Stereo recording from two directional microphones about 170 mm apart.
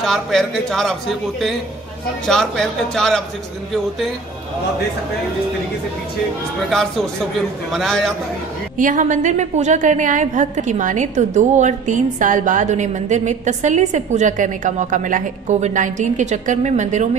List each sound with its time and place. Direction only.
0.0 s speech: 5° left (ahead or behind)
2.2 s speech: 5° left (ahead or behind)
6.7 s speech: 5° left (ahead or behind)
8.7 s a woman's voice: 50° right (ahead or behind)